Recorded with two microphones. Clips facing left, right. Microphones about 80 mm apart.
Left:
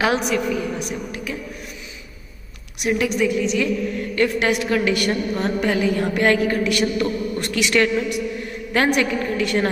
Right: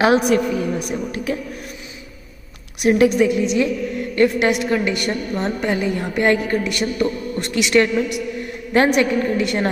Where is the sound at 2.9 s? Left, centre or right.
Right.